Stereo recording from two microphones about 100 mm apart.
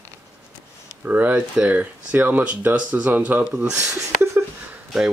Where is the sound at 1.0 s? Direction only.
15° right (ahead or behind).